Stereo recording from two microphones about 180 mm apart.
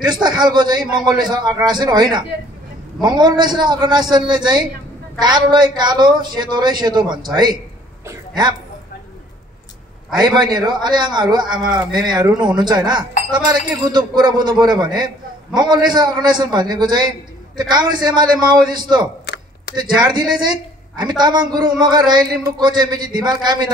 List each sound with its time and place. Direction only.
0.0 s speech: 25° right (ahead or behind)
10.1 s speech: 25° right (ahead or behind)
19.2 s a sound: 65° left (ahead or behind)
19.7 s a woman's voice: 25° right (ahead or behind)